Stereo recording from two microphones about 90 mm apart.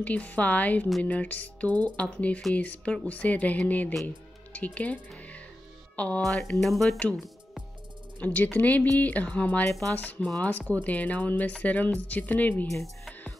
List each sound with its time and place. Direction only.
0.0 s speech: 15° left (ahead or behind)
5.9 s speech: 15° left (ahead or behind)
6.6 s speech: centre (ahead or behind)
8.2 s speech: 20° left (ahead or behind)
9.7 s speech: 5° left (ahead or behind)